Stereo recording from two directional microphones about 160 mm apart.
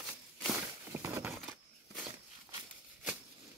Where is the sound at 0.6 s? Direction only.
15° right (ahead or behind).